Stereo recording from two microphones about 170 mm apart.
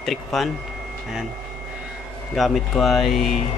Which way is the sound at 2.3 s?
Centre (ahead or behind).